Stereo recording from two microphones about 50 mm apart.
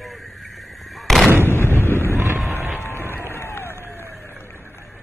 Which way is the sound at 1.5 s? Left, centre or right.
Left.